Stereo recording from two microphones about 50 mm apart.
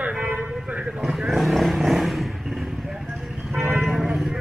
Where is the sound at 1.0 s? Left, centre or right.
Centre.